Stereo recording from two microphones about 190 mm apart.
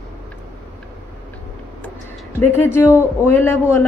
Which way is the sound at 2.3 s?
10° left (ahead or behind).